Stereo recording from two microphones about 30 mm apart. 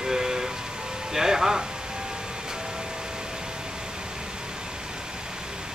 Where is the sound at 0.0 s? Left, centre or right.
Centre.